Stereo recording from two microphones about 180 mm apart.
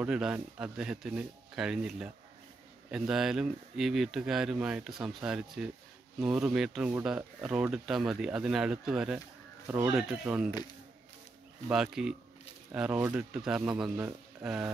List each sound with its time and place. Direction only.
0.0 s speech: 5° right (ahead or behind)
11.7 s speech: 5° right (ahead or behind)